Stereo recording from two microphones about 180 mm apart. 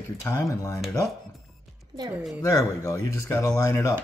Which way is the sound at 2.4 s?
20° left (ahead or behind).